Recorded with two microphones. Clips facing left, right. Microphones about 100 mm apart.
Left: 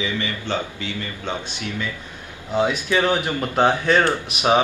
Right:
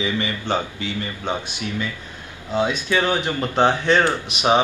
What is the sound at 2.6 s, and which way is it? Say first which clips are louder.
Speech: left 1 dB; 10° left (ahead or behind).